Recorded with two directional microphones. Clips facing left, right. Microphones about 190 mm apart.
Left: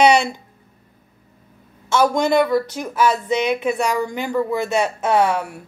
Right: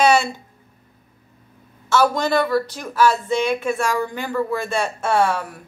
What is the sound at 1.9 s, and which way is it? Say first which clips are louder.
Speech: left 1 dB; 15° left (ahead or behind).